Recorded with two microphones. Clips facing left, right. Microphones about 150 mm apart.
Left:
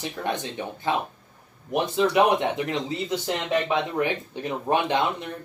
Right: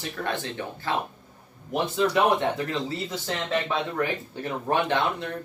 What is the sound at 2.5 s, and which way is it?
Speech, 20° left (ahead or behind).